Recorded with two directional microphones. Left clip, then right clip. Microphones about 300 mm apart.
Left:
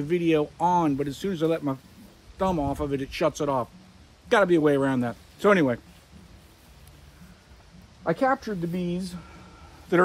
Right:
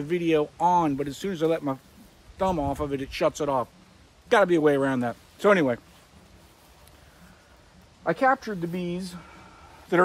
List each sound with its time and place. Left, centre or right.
0.0 s speech: centre
8.0 s speech: centre